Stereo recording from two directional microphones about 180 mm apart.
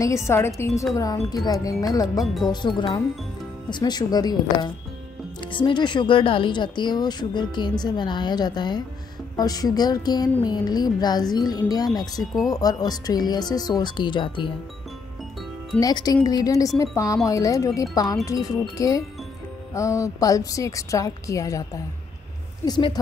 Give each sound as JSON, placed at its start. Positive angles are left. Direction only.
{"t": 0.0, "sound": "a woman's voice", "side_deg": 15}
{"t": 15.7, "sound": "a woman's voice", "side_deg": 25}